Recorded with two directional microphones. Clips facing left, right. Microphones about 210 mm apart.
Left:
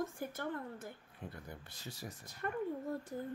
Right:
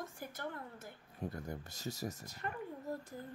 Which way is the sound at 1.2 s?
45° right (ahead or behind).